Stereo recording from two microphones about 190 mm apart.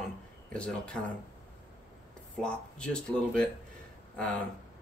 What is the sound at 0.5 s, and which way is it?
Speech, 5° left (ahead or behind).